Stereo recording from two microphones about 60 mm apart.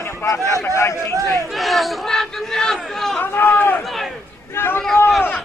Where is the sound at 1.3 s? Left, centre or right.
Centre.